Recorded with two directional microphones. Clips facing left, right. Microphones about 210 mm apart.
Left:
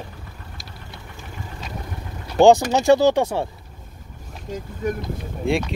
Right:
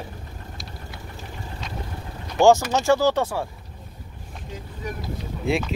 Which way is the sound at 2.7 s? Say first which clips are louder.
Left 4 dB; 15° left (ahead or behind).